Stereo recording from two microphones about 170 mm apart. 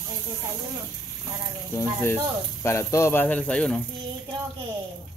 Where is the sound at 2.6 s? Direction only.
15° left (ahead or behind).